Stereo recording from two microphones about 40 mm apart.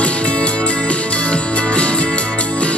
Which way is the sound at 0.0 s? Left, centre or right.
Left.